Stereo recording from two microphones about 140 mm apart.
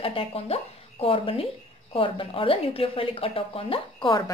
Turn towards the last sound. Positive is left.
turn(degrees=40)  # may be behind; listen again after turning